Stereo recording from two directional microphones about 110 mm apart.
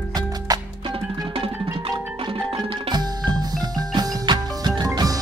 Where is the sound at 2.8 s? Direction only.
40° right (ahead or behind).